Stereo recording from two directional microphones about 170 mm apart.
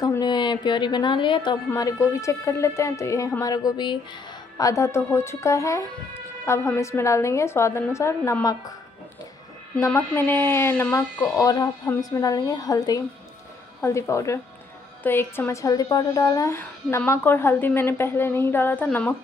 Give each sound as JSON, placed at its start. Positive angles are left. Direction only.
{"t": 0.0, "sound": "a woman's voice", "side_deg": 25}
{"t": 9.8, "sound": "a woman's voice", "side_deg": 15}